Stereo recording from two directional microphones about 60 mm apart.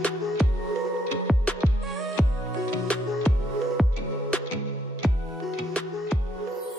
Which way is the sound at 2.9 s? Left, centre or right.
Centre.